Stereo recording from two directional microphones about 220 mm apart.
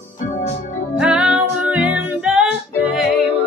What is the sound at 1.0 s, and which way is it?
Music, 5° right (ahead or behind).